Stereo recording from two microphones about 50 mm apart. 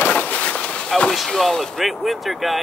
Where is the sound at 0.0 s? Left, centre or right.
Left.